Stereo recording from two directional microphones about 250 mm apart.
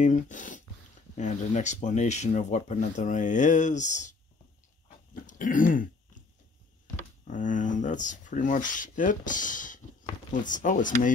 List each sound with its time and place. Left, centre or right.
0.0 s speech: left
4.8 s throat clearing: left
7.2 s speech: left